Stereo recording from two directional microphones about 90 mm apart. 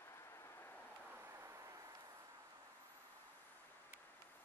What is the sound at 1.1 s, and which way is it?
Vehicle, 30° right (ahead or behind).